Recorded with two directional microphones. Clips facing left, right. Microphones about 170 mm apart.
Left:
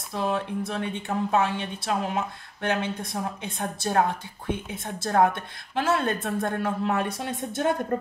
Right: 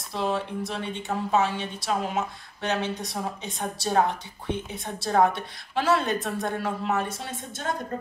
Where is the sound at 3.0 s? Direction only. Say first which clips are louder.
Left 1 dB; 50° left (ahead or behind).